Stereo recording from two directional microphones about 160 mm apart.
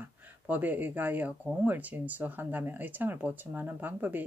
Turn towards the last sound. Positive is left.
turn(degrees=-10)  # may be behind; listen again after turning